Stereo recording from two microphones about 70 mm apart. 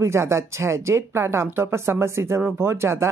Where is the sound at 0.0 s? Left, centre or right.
Right.